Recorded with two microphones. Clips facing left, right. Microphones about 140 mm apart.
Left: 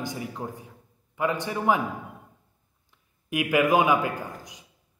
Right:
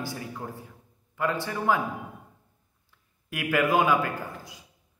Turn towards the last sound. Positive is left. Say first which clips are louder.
# left 1 dB
turn(degrees=15)  # may be behind; listen again after turning